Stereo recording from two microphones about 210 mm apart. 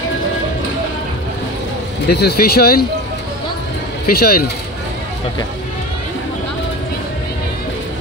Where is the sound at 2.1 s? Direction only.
50° left (ahead or behind).